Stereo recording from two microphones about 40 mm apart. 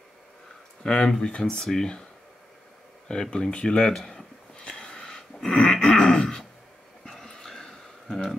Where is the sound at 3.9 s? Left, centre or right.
Centre.